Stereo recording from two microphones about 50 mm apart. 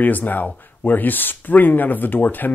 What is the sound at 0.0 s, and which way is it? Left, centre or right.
Speech, left.